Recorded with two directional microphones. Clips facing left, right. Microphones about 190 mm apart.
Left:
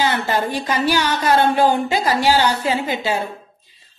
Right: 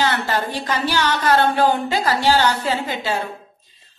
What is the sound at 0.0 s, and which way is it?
A woman's voice, 10° left (ahead or behind).